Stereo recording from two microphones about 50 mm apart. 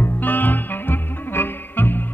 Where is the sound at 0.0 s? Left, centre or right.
Left.